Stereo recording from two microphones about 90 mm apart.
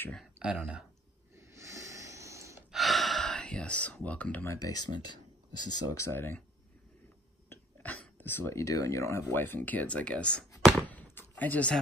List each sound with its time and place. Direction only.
0.2 s speech: 10° right (ahead or behind)
1.3 s a sound: 30° right (ahead or behind)
2.7 s gasp: centre (ahead or behind); by 4.5 s 15° left (ahead or behind)
4.6 s speech: 45° left (ahead or behind)
5.9 s speech: 30° left (ahead or behind)
7.4 s cough: 25° left (ahead or behind)
8.0 s speech: 20° left (ahead or behind)